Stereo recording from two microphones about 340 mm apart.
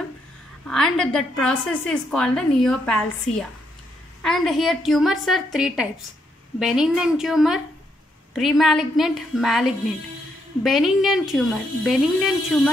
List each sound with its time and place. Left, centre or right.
0.7 s a woman's voice: centre
4.2 s a woman's voice: centre